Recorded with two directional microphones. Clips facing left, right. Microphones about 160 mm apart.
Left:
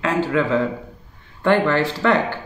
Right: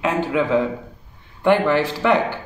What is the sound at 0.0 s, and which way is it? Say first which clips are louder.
A man's voice: even; 15° right (ahead or behind).